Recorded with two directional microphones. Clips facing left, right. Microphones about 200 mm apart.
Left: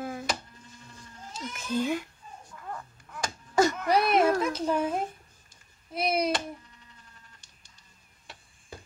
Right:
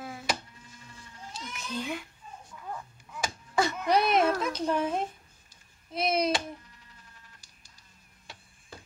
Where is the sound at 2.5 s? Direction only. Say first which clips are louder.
Even; 5° right (ahead or behind).